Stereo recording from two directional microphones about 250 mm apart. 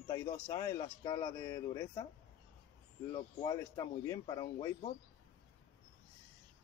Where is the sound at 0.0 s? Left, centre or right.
Centre.